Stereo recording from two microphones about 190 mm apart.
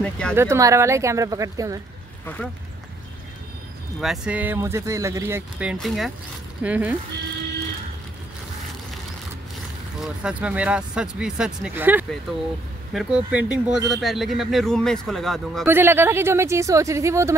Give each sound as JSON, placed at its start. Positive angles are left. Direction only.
{"t": 0.0, "sound": "speech", "side_deg": 5}
{"t": 0.4, "sound": "speech", "side_deg": -15}
{"t": 2.2, "sound": "speech", "side_deg": 10}
{"t": 4.0, "sound": "speech", "side_deg": 0}
{"t": 9.9, "sound": "speech", "side_deg": -5}
{"t": 15.6, "sound": "speech", "side_deg": -10}